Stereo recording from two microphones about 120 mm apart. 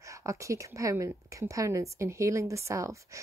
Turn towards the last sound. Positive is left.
turn(degrees=-25)  # may be behind; listen again after turning